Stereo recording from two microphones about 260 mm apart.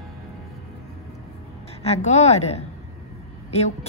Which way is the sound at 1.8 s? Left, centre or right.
Left.